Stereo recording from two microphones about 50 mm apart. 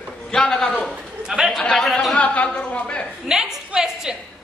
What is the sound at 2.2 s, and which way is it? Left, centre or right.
Speech, left.